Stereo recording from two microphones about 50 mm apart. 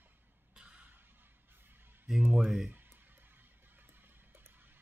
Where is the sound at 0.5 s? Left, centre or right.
Right.